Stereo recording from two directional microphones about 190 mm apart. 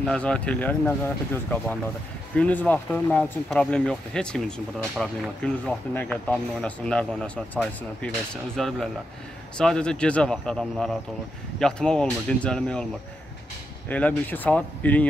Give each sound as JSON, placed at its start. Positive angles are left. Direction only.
{"t": 0.0, "sound": "speech", "side_deg": 5}
{"t": 13.8, "sound": "speech", "side_deg": 10}